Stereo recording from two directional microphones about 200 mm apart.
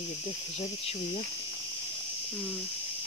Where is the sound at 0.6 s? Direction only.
30° left (ahead or behind).